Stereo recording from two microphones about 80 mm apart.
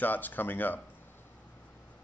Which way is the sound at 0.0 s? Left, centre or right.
Left.